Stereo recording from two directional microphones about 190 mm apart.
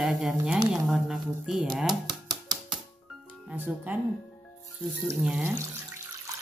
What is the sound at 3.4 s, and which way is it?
Speech, 10° right (ahead or behind).